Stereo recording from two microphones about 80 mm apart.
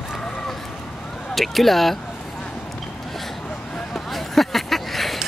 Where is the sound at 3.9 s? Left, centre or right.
Centre.